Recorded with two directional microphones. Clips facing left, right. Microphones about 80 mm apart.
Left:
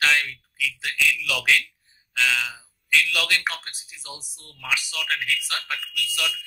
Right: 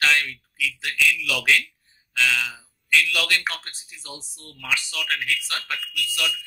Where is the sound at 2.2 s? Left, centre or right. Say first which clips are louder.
Right 1 dB; left.